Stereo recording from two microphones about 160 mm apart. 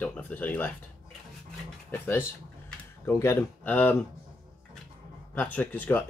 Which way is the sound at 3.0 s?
15° left (ahead or behind).